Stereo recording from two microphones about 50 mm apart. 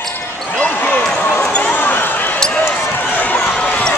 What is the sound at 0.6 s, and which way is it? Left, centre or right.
Basketball bounce, left.